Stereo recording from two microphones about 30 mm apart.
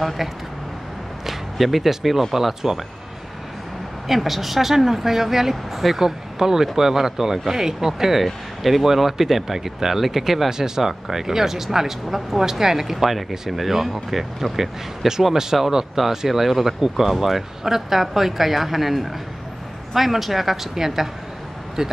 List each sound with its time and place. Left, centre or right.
1.2 s whip: centre
2.3 s speech: centre
4.1 s speech: centre
8.2 s speech: centre
12.9 s speech: centre
15.7 s speech: centre